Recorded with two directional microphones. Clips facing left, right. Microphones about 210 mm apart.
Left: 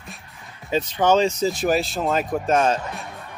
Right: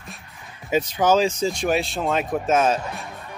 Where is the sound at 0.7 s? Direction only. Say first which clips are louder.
Even; 10° right (ahead or behind).